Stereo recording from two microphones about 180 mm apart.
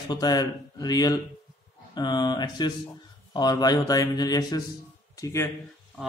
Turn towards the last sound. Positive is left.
turn(degrees=15)  # may be behind; listen again after turning